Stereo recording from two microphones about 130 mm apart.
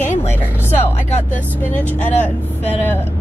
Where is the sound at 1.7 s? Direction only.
15° left (ahead or behind).